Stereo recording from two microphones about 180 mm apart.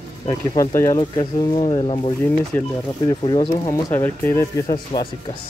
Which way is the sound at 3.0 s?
25° left (ahead or behind).